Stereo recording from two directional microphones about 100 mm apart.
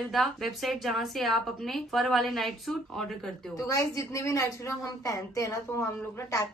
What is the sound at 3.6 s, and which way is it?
A woman's voice, 30° left (ahead or behind).